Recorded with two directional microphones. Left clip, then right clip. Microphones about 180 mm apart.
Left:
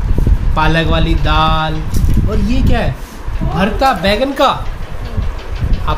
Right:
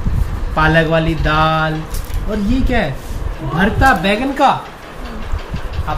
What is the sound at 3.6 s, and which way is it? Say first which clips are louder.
Speech: even; 20° left (ahead or behind).